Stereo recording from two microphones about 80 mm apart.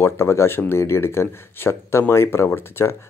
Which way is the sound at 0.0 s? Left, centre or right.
Left.